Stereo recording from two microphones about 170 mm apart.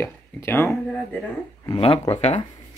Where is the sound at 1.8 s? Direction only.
35° left (ahead or behind).